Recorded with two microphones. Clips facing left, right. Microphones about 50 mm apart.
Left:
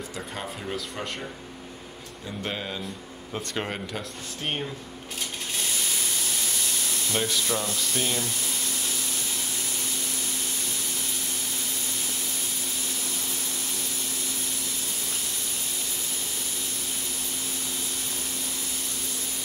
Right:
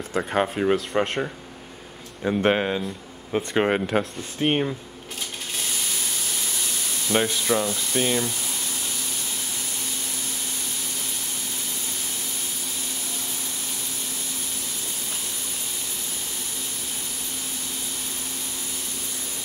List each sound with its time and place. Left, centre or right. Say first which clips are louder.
0.1 s speech: right 11 dB; right
2.2 s speech: right 12 dB; right
3.5 s speech: right 11 dB; right
4.4 s speech: right 9 dB; right
7.1 s speech: right 6 dB; right